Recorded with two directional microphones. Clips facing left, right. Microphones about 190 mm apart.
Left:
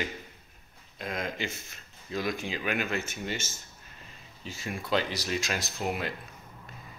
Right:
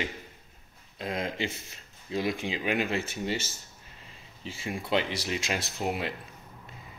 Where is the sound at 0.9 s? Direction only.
30° right (ahead or behind).